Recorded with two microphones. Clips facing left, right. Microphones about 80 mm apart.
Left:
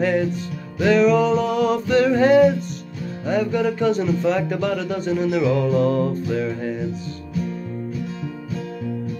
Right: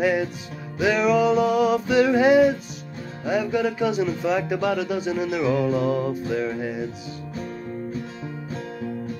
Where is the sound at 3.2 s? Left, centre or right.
Centre.